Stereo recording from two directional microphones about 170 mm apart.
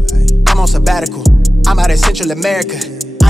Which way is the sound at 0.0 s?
Centre (ahead or behind).